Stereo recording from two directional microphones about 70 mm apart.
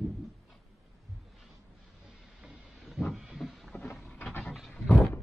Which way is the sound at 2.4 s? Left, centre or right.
Centre.